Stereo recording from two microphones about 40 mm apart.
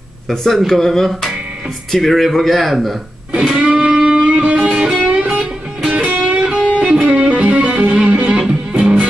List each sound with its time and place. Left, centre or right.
0.3 s speech: centre
3.5 s music: centre
4.8 s music: centre
5.1 s music: right